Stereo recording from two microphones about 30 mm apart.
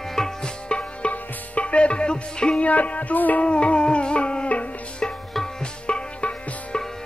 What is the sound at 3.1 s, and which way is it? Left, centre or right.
Music, left.